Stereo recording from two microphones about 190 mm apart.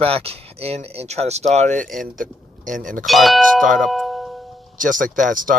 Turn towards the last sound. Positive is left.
turn(degrees=-45)  # may be behind; listen again after turning